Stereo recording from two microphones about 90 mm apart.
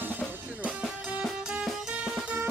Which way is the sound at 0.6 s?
10° right (ahead or behind).